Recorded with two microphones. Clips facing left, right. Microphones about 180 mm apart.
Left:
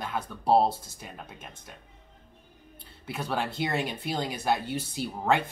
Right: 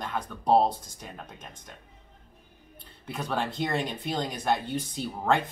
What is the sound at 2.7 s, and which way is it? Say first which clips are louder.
Speech: even; 5° left (ahead or behind).